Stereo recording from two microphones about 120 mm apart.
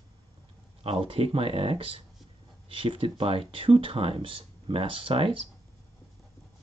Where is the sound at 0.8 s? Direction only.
50° right (ahead or behind).